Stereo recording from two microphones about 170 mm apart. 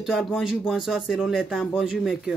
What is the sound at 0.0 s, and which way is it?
Speech, 5° right (ahead or behind).